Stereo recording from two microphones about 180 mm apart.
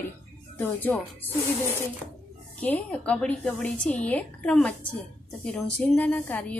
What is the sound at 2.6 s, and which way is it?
A woman's voice, 10° left (ahead or behind).